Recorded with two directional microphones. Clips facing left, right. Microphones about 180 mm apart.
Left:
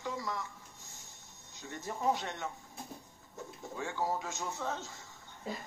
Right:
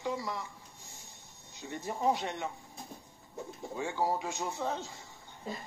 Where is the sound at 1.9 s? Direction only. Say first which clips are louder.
Right 2 dB; 15° right (ahead or behind).